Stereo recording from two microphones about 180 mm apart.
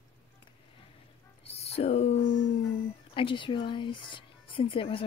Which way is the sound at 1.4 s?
35° left (ahead or behind).